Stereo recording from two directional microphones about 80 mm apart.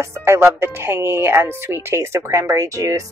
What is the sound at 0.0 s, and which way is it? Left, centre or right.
A woman's voice, right.